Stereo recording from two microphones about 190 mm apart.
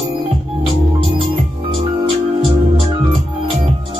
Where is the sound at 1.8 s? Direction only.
25° right (ahead or behind).